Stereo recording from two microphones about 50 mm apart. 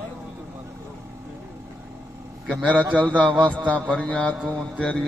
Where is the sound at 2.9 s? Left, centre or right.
Right.